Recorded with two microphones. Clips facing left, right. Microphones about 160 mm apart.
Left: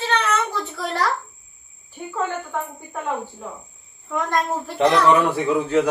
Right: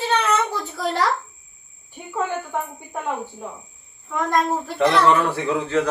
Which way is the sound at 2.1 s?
15° right (ahead or behind).